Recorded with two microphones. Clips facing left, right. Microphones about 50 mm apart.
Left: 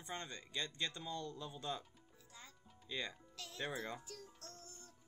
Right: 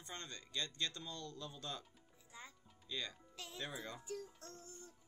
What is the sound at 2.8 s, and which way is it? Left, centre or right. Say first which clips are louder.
Speech: left 2 dB; left.